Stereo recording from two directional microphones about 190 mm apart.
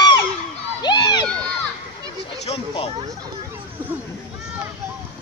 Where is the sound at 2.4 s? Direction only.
30° left (ahead or behind).